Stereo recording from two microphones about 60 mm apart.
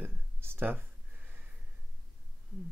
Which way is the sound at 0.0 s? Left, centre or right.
Right.